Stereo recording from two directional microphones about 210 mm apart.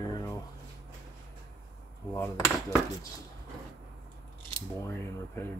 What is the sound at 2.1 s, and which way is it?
Speech, 10° left (ahead or behind).